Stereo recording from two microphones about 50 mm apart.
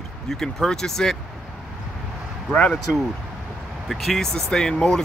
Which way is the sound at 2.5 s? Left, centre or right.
Left.